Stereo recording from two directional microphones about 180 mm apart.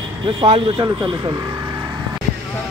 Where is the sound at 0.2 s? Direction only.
30° right (ahead or behind).